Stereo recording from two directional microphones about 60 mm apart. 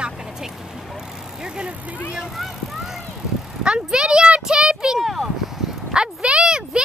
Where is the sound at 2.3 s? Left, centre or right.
Centre.